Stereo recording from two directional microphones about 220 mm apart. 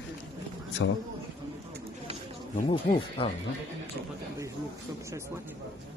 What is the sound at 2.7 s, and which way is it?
Speech, 20° left (ahead or behind).